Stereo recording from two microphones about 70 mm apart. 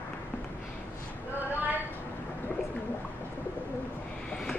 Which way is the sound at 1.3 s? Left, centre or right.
Right.